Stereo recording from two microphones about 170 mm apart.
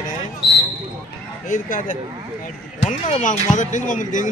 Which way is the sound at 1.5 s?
50° left (ahead or behind).